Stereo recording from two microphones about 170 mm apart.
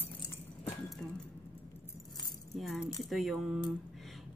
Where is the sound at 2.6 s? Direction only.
Centre (ahead or behind).